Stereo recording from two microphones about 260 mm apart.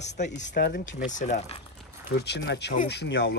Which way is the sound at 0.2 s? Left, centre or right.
Left.